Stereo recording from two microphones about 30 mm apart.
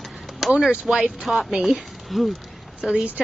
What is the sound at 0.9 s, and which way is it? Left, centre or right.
Speech, right.